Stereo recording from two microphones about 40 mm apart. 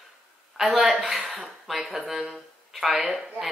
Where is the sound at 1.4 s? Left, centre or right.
Centre.